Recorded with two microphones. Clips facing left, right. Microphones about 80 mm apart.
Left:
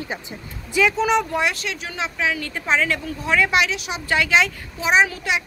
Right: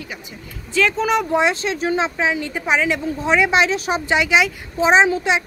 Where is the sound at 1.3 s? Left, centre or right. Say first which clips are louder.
Right 5 dB; right.